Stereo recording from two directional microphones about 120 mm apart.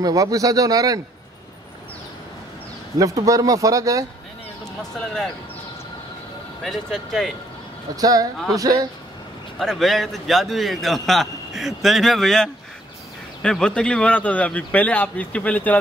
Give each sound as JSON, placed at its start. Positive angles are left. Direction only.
{"t": 0.0, "sound": "speech", "side_deg": -30}
{"t": 3.0, "sound": "speech", "side_deg": -30}
{"t": 4.9, "sound": "a man's voice", "side_deg": 5}
{"t": 6.6, "sound": "a man's voice", "side_deg": 5}
{"t": 7.9, "sound": "speech", "side_deg": -30}
{"t": 9.6, "sound": "a man's voice", "side_deg": 0}